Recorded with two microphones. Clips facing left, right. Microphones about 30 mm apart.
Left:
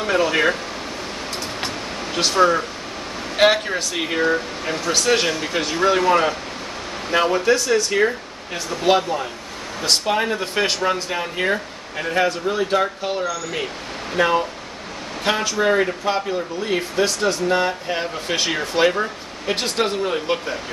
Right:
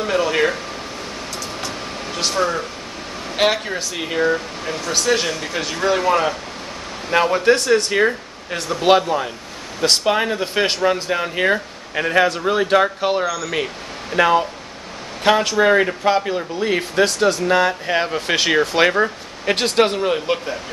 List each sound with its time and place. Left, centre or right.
0.0 s air conditioning: centre
2.1 s speech: centre
3.3 s speech: centre
7.1 s speech: centre
7.4 s speech: right
8.8 s speech: right
10.0 s speech: centre
11.9 s speech: right
12.3 s speech: right
15.6 s speech: right
17.0 s speech: right
18.2 s speech: right
20.0 s speech: centre